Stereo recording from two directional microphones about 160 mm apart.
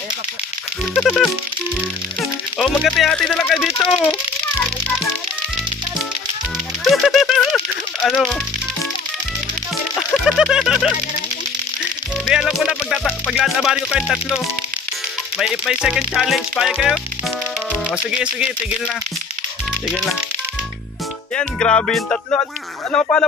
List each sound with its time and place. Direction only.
0.9 s speech: 5° left (ahead or behind)
2.6 s speech: centre (ahead or behind)
6.8 s music: centre (ahead or behind)
9.9 s speech: centre (ahead or behind)
12.3 s speech: centre (ahead or behind)
15.3 s speech: centre (ahead or behind)
21.4 s music: 10° left (ahead or behind)
22.3 s speech: 20° left (ahead or behind)
23.2 s speech: 5° left (ahead or behind)